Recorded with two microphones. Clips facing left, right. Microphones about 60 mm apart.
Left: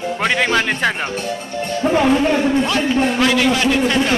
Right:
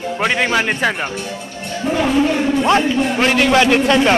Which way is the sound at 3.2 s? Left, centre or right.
Right.